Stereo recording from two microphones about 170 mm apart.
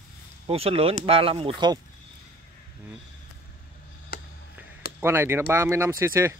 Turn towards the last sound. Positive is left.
turn(degrees=-15)  # may be behind; listen again after turning